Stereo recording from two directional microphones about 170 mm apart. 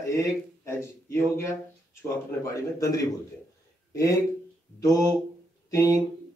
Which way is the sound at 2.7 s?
20° left (ahead or behind).